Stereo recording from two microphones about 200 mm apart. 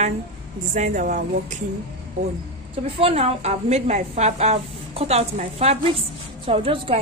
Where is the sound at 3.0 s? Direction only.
30° right (ahead or behind).